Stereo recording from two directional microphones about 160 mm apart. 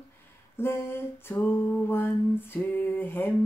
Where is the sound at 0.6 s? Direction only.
15° left (ahead or behind).